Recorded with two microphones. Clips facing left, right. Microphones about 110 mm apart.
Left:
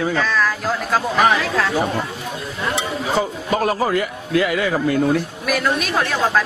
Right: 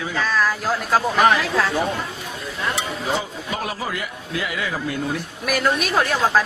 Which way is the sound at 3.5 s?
50° left (ahead or behind).